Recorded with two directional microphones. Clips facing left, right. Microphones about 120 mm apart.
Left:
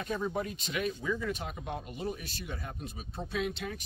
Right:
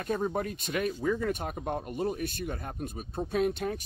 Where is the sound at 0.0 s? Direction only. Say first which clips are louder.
Right 3 dB; 50° right (ahead or behind).